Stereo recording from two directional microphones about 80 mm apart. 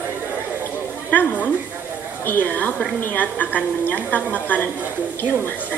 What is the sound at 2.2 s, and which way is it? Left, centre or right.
Speech, left.